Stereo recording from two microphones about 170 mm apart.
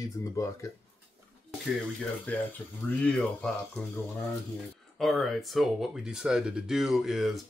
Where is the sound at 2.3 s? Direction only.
10° left (ahead or behind).